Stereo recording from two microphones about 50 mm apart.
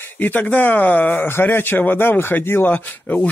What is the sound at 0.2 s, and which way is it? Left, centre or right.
Speech, left.